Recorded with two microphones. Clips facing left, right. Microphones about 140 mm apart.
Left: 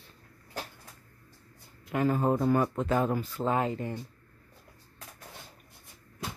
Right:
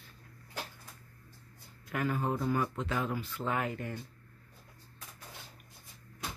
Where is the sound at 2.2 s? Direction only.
45° left (ahead or behind); by 3.9 s 25° left (ahead or behind).